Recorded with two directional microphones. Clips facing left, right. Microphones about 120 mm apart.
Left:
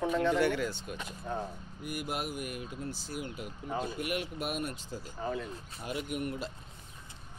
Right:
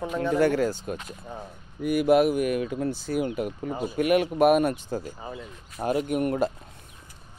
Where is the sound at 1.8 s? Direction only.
70° right (ahead or behind).